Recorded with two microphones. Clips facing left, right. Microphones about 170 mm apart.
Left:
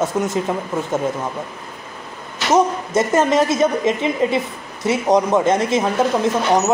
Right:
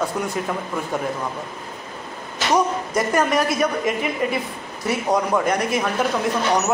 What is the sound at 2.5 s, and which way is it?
Speech, 25° left (ahead or behind).